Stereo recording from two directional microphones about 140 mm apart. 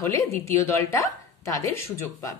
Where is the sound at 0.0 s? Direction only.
20° left (ahead or behind).